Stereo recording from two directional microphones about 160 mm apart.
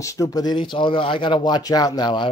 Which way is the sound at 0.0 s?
20° left (ahead or behind).